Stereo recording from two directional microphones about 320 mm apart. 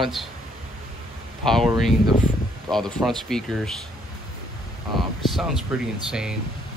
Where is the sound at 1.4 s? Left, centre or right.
Centre.